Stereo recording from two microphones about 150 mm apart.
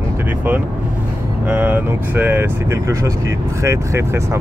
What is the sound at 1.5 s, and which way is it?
Speech, 10° right (ahead or behind).